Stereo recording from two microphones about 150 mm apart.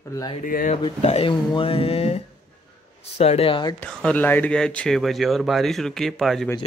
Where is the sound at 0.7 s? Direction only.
45° left (ahead or behind).